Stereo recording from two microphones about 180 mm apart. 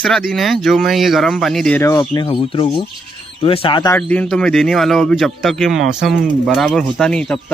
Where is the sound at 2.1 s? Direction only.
25° left (ahead or behind).